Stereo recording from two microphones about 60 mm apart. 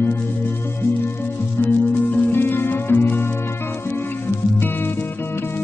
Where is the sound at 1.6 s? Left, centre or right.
Left.